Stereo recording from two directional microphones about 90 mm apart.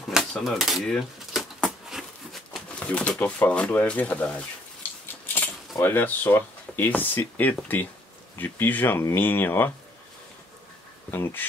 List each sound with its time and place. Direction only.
0.4 s coin: centre (ahead or behind)
2.8 s speech: 15° left (ahead or behind)
5.0 s a sound: 20° left (ahead or behind)
5.8 s speech: 20° left (ahead or behind)
11.1 s speech: 25° left (ahead or behind)